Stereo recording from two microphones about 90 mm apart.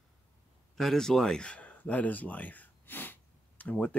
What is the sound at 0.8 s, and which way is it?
Speech, 5° left (ahead or behind).